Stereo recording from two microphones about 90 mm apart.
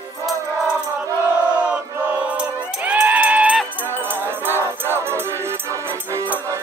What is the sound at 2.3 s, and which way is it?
Music, 15° right (ahead or behind).